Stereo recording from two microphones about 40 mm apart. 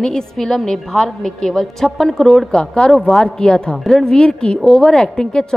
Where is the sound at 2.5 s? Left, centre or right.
Centre.